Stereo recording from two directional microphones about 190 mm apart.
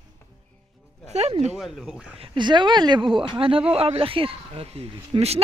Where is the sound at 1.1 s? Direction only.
35° right (ahead or behind).